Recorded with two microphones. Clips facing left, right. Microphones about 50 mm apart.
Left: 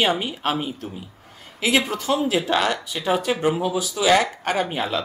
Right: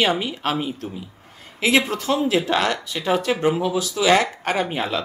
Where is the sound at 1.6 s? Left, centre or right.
Right.